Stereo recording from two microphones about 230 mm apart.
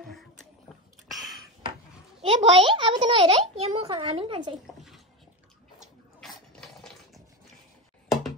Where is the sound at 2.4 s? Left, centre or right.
Right.